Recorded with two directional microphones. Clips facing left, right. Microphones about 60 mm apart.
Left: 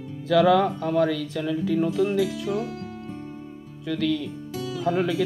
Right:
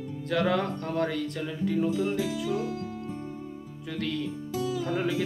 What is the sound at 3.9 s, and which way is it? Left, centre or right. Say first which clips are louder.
Speech: left 6 dB; left.